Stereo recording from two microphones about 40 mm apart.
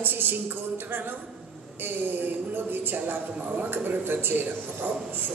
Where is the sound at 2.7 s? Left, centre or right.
Right.